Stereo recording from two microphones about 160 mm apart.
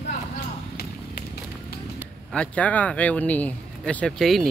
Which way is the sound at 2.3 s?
5° left (ahead or behind).